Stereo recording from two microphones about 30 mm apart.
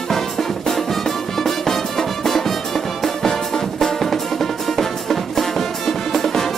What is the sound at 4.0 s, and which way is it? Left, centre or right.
Music, centre.